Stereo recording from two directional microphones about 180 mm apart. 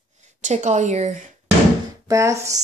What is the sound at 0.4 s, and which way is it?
Speech, 40° right (ahead or behind).